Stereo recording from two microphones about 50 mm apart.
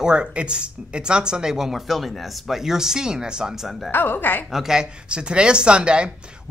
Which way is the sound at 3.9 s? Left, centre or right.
Left.